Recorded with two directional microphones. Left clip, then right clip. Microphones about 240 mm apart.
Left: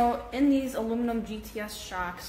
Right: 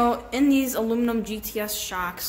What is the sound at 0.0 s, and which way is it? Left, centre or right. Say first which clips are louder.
A woman's voice: right 3 dB; right.